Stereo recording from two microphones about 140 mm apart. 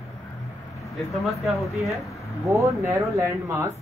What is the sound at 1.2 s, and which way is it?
Speech, centre (ahead or behind).